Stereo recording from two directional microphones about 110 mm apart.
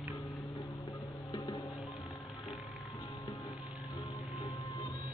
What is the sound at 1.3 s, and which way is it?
Music, 40° left (ahead or behind).